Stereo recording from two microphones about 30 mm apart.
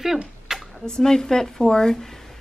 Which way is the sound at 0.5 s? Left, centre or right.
Centre.